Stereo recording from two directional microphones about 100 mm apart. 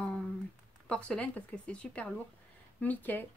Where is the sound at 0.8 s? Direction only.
10° left (ahead or behind).